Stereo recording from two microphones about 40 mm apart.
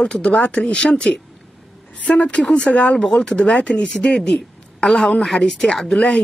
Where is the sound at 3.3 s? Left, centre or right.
Left.